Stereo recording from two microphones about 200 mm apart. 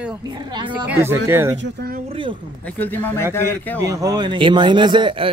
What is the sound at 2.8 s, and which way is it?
Speech, 10° left (ahead or behind).